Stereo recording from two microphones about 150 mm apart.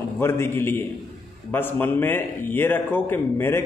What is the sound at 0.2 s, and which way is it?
A man's voice, 15° left (ahead or behind).